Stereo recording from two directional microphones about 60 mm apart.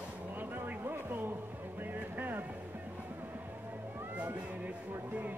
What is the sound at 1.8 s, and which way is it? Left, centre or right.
Music, right.